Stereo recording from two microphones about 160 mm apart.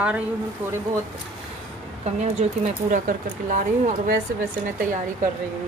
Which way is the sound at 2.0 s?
45° right (ahead or behind).